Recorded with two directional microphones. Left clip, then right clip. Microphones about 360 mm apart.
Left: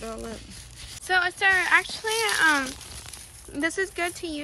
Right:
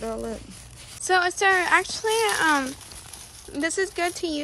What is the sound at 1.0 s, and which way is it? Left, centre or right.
Speech, centre.